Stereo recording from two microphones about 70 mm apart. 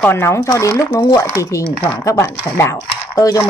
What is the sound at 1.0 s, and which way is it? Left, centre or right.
Speech, left.